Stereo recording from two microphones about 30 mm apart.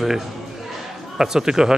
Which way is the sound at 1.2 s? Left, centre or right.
Centre.